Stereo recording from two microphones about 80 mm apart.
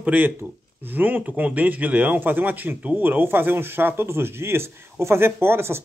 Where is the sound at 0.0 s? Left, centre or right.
Centre.